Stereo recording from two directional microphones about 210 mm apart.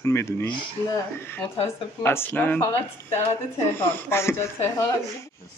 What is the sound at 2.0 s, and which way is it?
Speech, 10° left (ahead or behind).